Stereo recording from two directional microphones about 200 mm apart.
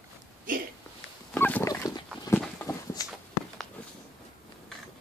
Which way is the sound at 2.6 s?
15° left (ahead or behind).